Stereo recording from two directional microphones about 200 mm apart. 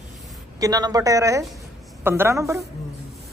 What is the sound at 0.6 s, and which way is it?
A woman's voice, 20° right (ahead or behind).